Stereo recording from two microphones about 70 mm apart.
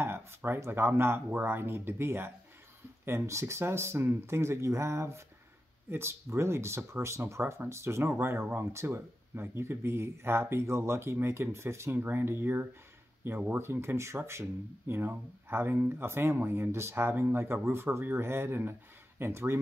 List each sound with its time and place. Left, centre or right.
0.0 s speech: right